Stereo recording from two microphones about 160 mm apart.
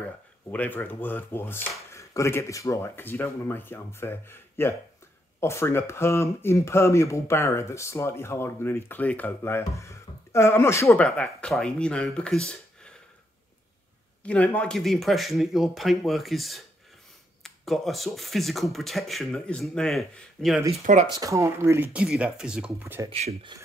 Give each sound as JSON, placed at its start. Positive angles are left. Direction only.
{"t": 0.5, "sound": "speech", "side_deg": 10}
{"t": 11.1, "sound": "speech", "side_deg": 5}
{"t": 14.2, "sound": "speech", "side_deg": 10}
{"t": 20.8, "sound": "speech", "side_deg": -45}
{"t": 21.1, "sound": "speech", "side_deg": -20}
{"t": 23.0, "sound": "speech", "side_deg": -40}